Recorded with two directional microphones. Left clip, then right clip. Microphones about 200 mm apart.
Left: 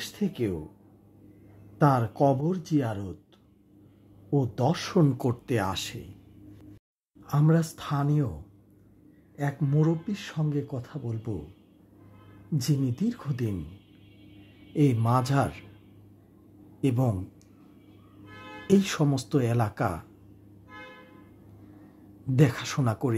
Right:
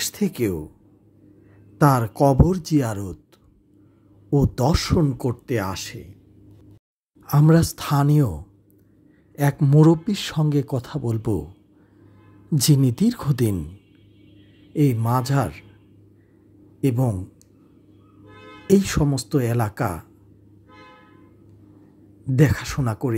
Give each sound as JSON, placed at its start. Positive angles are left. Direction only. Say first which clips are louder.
{"t": 0.0, "sound": "speech", "louder": "right 7 dB", "side_deg": -20}
{"t": 1.8, "sound": "speech", "louder": "right 5 dB", "side_deg": -15}
{"t": 4.3, "sound": "speech", "louder": "right 6 dB", "side_deg": -20}
{"t": 4.9, "sound": "speech", "louder": "right 3 dB", "side_deg": -5}
{"t": 7.2, "sound": "speech", "louder": "right 8 dB", "side_deg": -20}
{"t": 12.5, "sound": "speech", "louder": "right 9 dB", "side_deg": -25}
{"t": 14.7, "sound": "speech", "louder": "right 3 dB", "side_deg": -10}
{"t": 16.8, "sound": "speech", "louder": "right 4 dB", "side_deg": -15}
{"t": 18.7, "sound": "speech", "louder": "right 5 dB", "side_deg": -10}
{"t": 22.2, "sound": "speech", "louder": "right 5 dB", "side_deg": -10}